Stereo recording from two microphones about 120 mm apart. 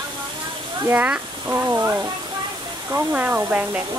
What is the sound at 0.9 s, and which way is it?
Speech, 10° right (ahead or behind).